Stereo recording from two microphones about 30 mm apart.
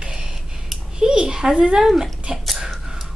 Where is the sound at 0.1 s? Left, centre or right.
Right.